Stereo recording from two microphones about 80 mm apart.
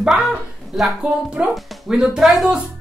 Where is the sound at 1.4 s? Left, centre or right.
Centre.